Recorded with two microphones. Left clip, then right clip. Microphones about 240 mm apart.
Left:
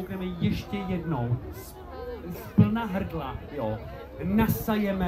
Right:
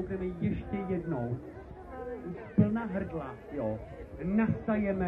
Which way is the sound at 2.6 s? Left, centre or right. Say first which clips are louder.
Left 4 dB; left.